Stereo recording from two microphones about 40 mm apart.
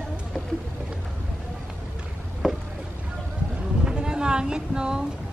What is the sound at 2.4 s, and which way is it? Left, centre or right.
Boat, centre.